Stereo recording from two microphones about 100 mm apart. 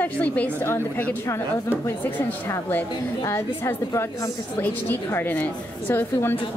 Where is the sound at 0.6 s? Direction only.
25° left (ahead or behind).